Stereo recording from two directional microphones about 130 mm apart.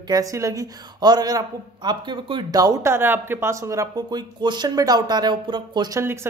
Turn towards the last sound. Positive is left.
turn(degrees=-35)  # may be behind; listen again after turning